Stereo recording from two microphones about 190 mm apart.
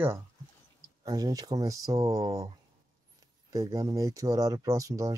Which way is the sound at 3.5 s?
20° right (ahead or behind).